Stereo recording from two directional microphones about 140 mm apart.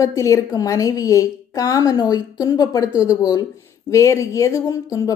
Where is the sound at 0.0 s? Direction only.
25° left (ahead or behind).